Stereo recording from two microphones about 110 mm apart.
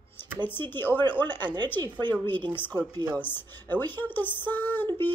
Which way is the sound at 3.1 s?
20° left (ahead or behind).